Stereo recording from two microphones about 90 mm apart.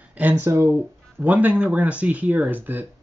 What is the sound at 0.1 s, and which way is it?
Speech, 20° right (ahead or behind).